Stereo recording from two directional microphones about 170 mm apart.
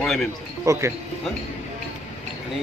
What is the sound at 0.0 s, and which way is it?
Speech, 5° left (ahead or behind).